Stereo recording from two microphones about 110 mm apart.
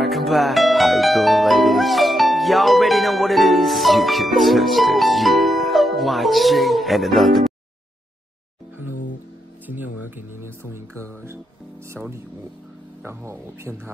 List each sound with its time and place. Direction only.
0.0 s harp: centre (ahead or behind)
9.7 s speech: 15° right (ahead or behind)
12.0 s speech: 10° right (ahead or behind)
13.0 s speech: 25° right (ahead or behind)